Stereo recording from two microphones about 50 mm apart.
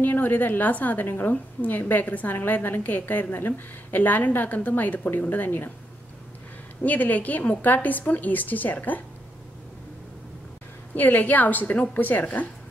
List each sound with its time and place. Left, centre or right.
0.0 s a woman's voice: left
6.8 s a woman's voice: left
11.0 s a woman's voice: left